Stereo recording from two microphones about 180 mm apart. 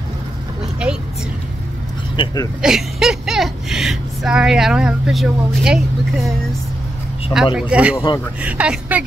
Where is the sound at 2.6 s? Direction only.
5° right (ahead or behind).